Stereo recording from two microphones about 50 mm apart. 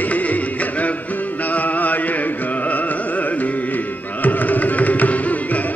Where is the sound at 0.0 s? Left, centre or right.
Left.